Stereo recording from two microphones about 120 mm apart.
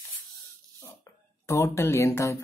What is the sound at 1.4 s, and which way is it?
Speech, 25° left (ahead or behind).